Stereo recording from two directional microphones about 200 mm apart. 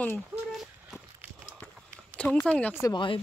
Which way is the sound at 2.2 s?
5° left (ahead or behind).